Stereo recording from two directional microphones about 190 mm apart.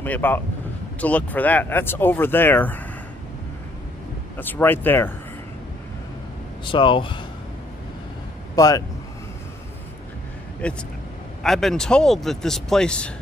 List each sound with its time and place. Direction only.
0.0 s speech: 10° left (ahead or behind)
4.4 s speech: 10° left (ahead or behind)
6.6 s speech: 25° left (ahead or behind)
8.5 s speech: 20° left (ahead or behind)
10.6 s speech: 5° left (ahead or behind)